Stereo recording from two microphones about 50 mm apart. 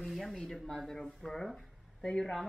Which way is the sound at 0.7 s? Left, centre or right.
Centre.